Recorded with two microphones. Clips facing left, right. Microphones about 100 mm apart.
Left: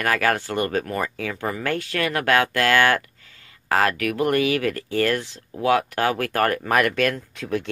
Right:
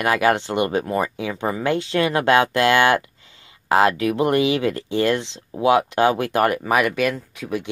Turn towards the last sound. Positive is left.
turn(degrees=-5)  # may be behind; listen again after turning